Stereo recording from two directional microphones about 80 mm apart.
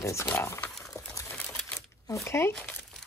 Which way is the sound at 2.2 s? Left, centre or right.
Left.